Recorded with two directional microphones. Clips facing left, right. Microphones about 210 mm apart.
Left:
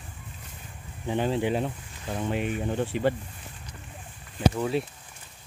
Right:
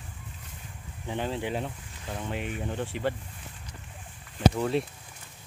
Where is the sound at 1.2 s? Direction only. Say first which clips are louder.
Left 5 dB; 15° left (ahead or behind).